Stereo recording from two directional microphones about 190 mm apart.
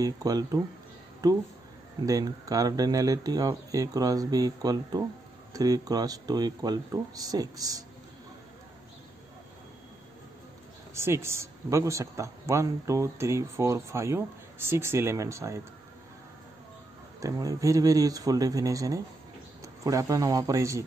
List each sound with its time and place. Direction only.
0.0 s speech: 20° right (ahead or behind)
11.0 s speech: 15° right (ahead or behind)
17.2 s a man's voice: 20° right (ahead or behind)